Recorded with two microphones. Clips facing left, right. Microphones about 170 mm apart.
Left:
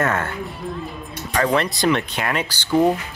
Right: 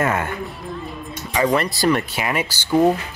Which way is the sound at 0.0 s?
10° right (ahead or behind).